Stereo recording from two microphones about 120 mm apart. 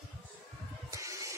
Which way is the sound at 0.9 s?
25° right (ahead or behind).